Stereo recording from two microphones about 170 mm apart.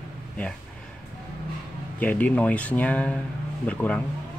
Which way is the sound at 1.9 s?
10° left (ahead or behind).